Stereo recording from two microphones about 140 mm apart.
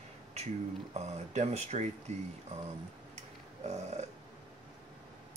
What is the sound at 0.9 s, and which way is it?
Speech, 50° right (ahead or behind).